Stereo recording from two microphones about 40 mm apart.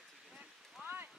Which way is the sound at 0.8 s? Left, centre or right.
Right.